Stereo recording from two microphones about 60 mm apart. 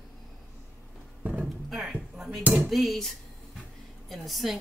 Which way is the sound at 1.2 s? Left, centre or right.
Right.